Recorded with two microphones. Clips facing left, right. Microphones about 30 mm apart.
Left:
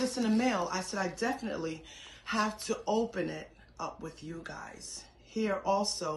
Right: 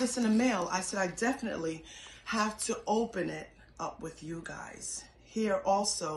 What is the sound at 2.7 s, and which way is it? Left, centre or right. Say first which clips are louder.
Speech: even; left.